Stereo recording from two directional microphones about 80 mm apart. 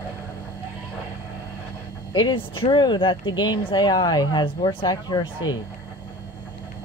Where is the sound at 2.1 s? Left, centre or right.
Left.